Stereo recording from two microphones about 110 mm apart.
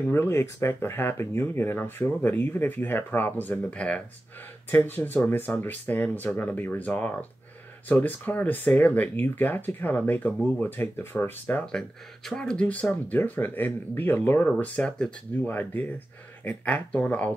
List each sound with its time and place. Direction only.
0.1 s speech: 20° left (ahead or behind)
12.3 s speech: 5° left (ahead or behind)